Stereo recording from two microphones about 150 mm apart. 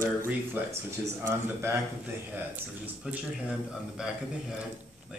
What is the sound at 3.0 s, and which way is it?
A man's voice, 5° right (ahead or behind).